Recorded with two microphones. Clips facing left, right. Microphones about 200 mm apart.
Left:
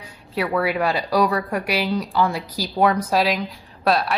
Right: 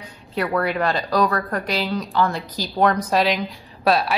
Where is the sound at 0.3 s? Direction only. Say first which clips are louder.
Even; 5° left (ahead or behind).